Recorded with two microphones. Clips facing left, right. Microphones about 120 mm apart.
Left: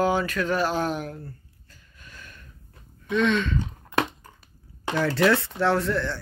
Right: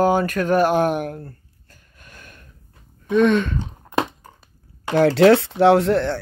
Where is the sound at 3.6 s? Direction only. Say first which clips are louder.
Right 3 dB; 30° right (ahead or behind).